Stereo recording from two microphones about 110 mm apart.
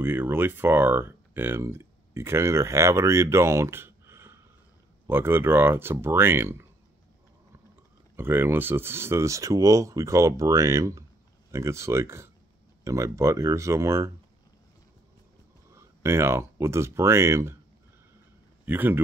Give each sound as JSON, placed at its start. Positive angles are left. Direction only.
{"t": 0.0, "sound": "speech", "side_deg": -20}
{"t": 8.2, "sound": "speech", "side_deg": -20}
{"t": 15.7, "sound": "speech", "side_deg": -25}
{"t": 18.7, "sound": "speech", "side_deg": -20}